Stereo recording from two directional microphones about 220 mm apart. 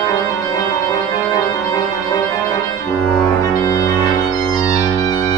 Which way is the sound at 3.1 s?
15° left (ahead or behind).